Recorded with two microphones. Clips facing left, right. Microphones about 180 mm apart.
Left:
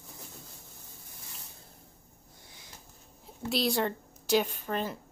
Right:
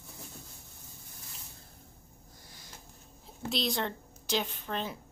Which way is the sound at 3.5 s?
5° left (ahead or behind).